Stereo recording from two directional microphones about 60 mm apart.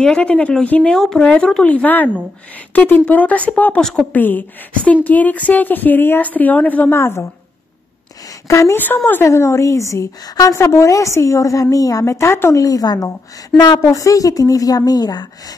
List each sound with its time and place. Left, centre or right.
0.0 s a woman's voice: centre
0.9 s a woman's voice: centre
1.7 s a woman's voice: left
6.9 s speech: left
8.5 s a woman's voice: left
8.7 s a woman's voice: left
9.2 s a woman's voice: left
10.5 s a woman's voice: left
12.1 s speech: left
12.6 s speech: left
13.7 s a woman's voice: left